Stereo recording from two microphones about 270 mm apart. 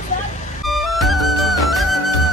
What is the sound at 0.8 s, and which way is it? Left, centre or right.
Music, centre.